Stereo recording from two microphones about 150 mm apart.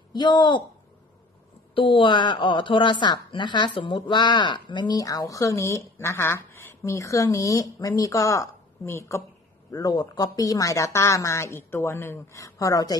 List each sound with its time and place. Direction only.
0.1 s speech: 30° left (ahead or behind)
1.8 s speech: 35° left (ahead or behind)